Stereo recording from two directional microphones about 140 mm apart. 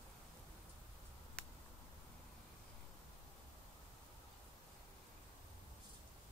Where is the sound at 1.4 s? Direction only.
5° left (ahead or behind).